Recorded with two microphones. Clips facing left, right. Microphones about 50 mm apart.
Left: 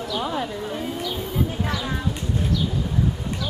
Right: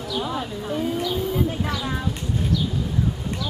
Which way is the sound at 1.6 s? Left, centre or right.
Centre.